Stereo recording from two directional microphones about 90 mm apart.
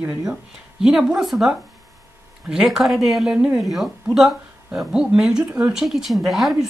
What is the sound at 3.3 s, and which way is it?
Speech, 15° right (ahead or behind).